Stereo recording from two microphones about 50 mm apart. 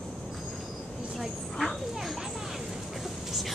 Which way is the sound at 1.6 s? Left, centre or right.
Centre.